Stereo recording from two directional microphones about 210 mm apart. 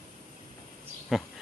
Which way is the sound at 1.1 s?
Centre (ahead or behind).